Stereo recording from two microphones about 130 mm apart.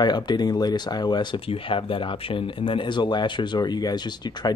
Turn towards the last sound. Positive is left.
turn(degrees=35)  # may be behind; listen again after turning